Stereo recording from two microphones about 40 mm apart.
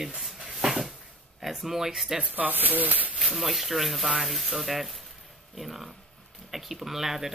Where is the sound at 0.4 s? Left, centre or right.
Centre.